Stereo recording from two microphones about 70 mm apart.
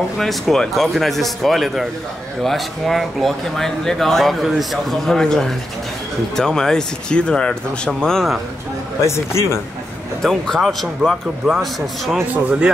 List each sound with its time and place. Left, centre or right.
0.2 s speech: centre
9.0 s speech: left
10.2 s speech: centre
12.4 s speech: centre